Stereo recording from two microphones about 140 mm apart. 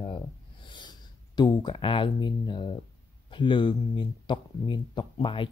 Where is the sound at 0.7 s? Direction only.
30° left (ahead or behind).